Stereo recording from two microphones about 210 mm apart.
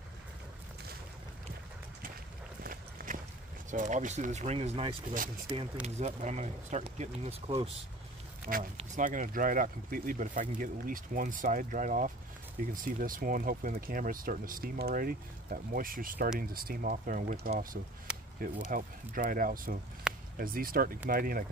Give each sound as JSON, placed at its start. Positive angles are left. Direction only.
{"t": 2.6, "sound": "a sound", "side_deg": -45}
{"t": 3.7, "sound": "speech", "side_deg": -35}
{"t": 8.7, "sound": "speech", "side_deg": -35}